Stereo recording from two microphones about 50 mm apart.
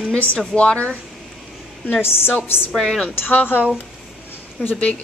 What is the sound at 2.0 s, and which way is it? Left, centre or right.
Speech, left.